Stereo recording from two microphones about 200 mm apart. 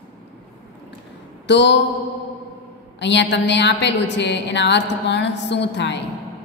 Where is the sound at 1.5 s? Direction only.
65° left (ahead or behind).